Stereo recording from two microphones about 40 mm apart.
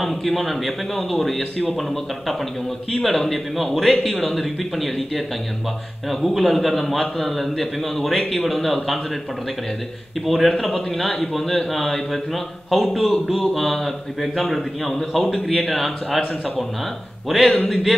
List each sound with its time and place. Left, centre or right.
0.0 s a man's voice: centre
1.4 s a man's voice: left
1.8 s a man's voice: centre
10.2 s a man's voice: centre